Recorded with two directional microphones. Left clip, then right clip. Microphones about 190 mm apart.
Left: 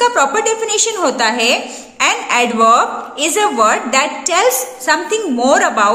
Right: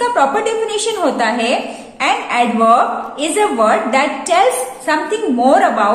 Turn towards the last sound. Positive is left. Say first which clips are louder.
# even
turn(degrees=40)  # may be behind; listen again after turning